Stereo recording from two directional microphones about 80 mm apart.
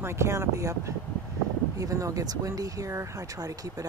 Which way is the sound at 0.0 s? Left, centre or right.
Right.